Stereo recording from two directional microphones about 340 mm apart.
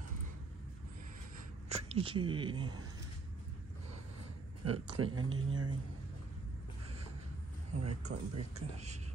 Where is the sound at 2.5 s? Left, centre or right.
Right.